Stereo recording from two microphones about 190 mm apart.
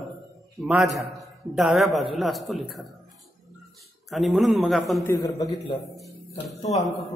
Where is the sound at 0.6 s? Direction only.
Centre (ahead or behind).